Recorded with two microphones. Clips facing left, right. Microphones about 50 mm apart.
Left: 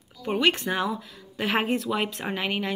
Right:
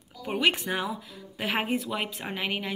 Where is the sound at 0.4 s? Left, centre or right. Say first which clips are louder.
Left 2 dB; centre.